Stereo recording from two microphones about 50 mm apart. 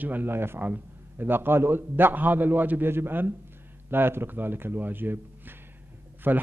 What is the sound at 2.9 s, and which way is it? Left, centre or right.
A man's voice, right.